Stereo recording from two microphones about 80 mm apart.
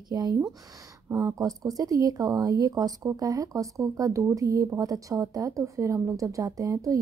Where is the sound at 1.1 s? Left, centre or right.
Right.